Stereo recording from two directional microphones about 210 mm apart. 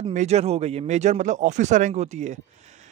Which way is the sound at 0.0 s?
30° right (ahead or behind).